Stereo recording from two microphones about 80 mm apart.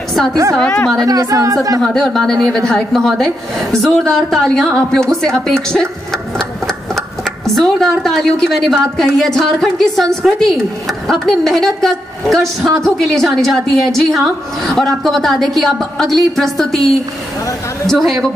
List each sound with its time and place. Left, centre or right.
0.1 s a sound: centre
0.6 s a woman's voice: centre
0.9 s a woman's voice: right
1.8 s speech: centre
7.0 s speech: centre